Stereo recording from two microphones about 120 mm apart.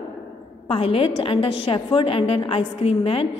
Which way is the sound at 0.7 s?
50° left (ahead or behind).